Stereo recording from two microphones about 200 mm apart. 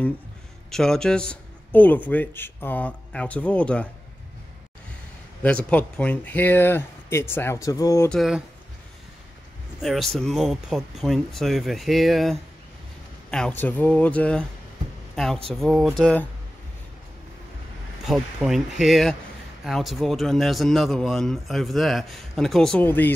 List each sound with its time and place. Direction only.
0.7 s a man's voice: centre (ahead or behind)
5.7 s speech: 5° left (ahead or behind)
8.1 s speech: centre (ahead or behind)
9.8 s speech: centre (ahead or behind)
18.0 s speech: centre (ahead or behind)